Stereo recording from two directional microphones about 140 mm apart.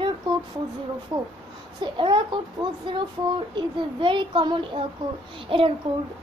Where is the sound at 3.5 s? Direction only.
35° right (ahead or behind).